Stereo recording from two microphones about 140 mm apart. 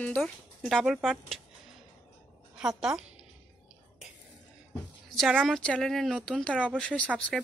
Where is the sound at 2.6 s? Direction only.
5° right (ahead or behind).